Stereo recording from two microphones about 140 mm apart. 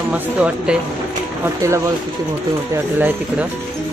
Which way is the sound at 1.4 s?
20° right (ahead or behind).